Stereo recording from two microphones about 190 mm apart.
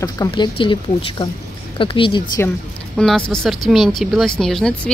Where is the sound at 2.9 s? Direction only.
5° left (ahead or behind).